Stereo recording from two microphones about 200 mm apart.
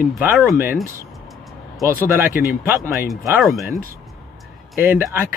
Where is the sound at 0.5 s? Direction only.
10° right (ahead or behind).